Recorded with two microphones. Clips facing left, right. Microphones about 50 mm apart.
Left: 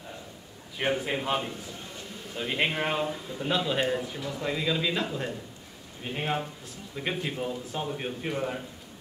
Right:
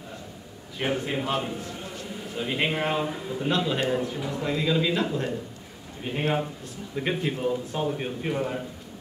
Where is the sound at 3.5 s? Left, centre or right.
Centre.